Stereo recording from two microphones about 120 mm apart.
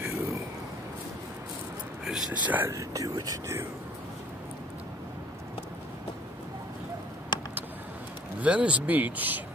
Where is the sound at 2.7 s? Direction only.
30° right (ahead or behind).